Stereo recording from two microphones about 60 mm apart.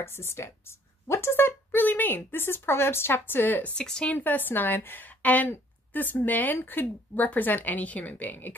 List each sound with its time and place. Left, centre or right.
0.0 s speech: left
3.7 s speech: centre
4.1 s speech: left